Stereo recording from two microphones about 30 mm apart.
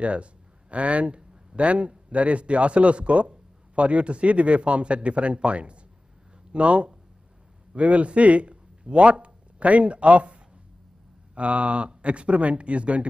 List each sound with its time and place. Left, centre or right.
0.0 s speech: right